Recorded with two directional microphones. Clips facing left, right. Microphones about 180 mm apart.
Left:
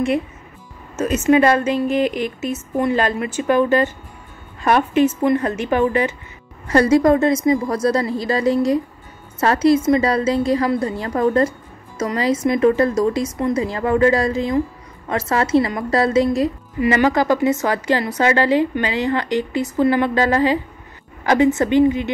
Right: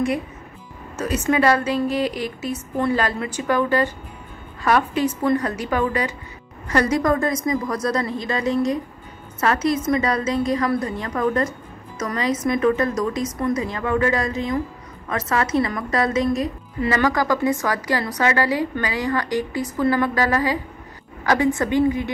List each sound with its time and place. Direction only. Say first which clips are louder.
0.9 s a woman's voice: left 5 dB; 25° left (ahead or behind)